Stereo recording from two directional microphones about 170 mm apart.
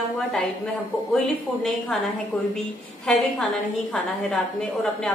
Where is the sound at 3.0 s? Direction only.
5° left (ahead or behind).